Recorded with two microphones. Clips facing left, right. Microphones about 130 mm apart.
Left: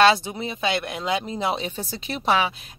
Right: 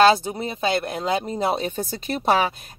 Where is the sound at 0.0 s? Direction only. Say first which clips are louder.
Right 2 dB; 40° right (ahead or behind).